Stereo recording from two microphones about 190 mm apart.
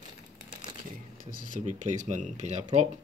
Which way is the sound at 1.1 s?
45° right (ahead or behind).